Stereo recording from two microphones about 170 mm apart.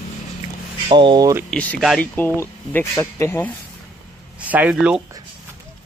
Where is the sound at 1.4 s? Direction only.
5° left (ahead or behind).